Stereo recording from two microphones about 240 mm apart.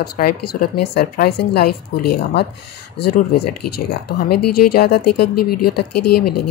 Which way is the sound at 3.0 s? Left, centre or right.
Left.